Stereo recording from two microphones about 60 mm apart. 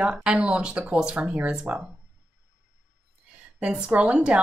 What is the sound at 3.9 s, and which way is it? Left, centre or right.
Speech, right.